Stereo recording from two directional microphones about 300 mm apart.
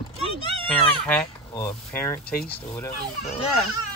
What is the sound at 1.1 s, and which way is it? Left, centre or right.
Speech, centre.